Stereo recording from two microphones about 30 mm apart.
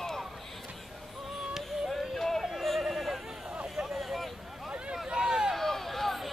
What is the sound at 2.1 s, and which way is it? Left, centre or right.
Yodeling, centre.